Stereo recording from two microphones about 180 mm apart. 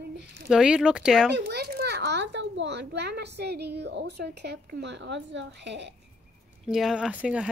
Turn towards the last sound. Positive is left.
turn(degrees=-5)  # may be behind; listen again after turning